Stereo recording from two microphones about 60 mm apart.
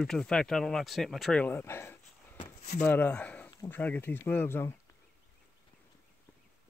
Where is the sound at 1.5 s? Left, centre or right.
Left.